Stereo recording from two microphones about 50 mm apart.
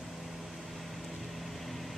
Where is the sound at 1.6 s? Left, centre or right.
Centre.